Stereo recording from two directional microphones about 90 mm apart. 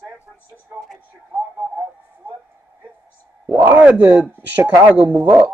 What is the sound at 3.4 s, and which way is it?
Speech, 25° right (ahead or behind).